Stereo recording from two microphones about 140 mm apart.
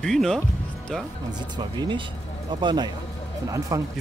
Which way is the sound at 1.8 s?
35° right (ahead or behind).